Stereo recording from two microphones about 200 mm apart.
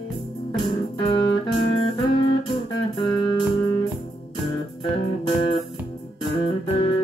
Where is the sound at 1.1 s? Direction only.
25° left (ahead or behind).